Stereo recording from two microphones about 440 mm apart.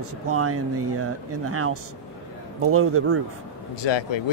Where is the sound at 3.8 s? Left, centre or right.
Left.